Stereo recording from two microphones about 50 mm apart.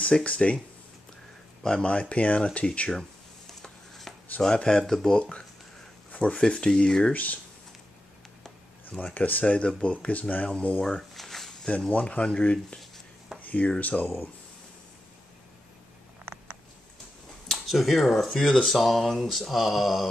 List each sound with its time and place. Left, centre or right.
0.2 s speech: left
1.6 s speech: centre
1.9 s speech: left
4.1 s a sound: centre
4.6 s speech: centre
9.1 s speech: left
9.4 s speech: left
10.9 s a sound: centre
11.9 s speech: left
17.5 s speech: centre
18.7 s mantra: centre